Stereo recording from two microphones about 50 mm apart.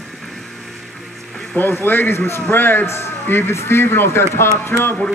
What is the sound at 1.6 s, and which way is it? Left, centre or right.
Speech, left.